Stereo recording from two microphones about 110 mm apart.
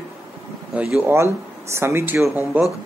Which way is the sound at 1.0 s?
25° right (ahead or behind).